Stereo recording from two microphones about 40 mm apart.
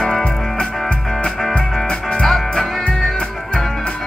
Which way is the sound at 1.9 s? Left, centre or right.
Left.